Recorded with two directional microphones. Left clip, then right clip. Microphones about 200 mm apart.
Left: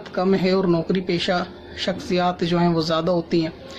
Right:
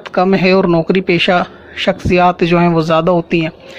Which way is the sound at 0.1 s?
45° right (ahead or behind).